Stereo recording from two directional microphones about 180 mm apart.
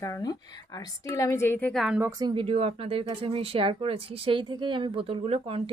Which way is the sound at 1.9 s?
15° right (ahead or behind).